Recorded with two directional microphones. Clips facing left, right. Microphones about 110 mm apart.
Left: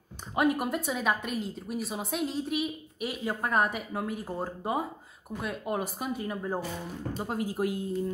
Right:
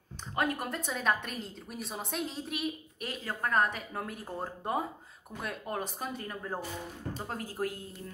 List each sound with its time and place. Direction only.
0.4 s a woman's voice: 15° left (ahead or behind)